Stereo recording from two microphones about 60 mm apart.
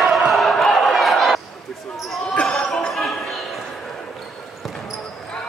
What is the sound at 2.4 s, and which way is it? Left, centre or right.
Basketball bounce, centre.